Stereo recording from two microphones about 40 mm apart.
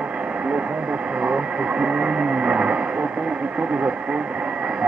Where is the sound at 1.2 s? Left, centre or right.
Right.